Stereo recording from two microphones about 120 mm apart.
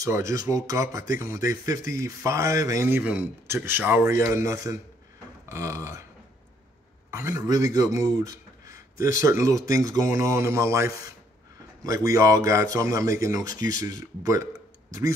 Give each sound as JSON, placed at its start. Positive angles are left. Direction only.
{"t": 0.0, "sound": "speech", "side_deg": -25}
{"t": 3.0, "sound": "speech", "side_deg": -10}
{"t": 7.1, "sound": "speech", "side_deg": -25}